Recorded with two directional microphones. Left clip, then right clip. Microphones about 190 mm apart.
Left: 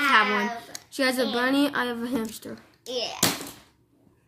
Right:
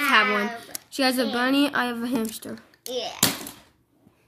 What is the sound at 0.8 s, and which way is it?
Speech, 30° right (ahead or behind).